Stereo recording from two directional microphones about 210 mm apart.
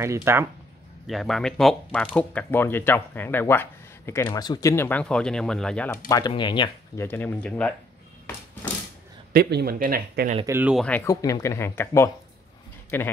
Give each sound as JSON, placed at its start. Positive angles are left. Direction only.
{"t": 0.0, "sound": "speech", "side_deg": -15}
{"t": 1.0, "sound": "speech", "side_deg": 0}
{"t": 6.0, "sound": "speech", "side_deg": 20}
{"t": 7.1, "sound": "speech", "side_deg": 10}
{"t": 9.3, "sound": "speech", "side_deg": -50}
{"t": 10.4, "sound": "speech", "side_deg": -10}
{"t": 10.9, "sound": "speech", "side_deg": 15}